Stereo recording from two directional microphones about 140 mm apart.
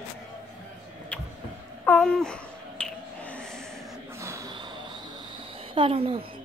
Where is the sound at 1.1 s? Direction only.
10° left (ahead or behind).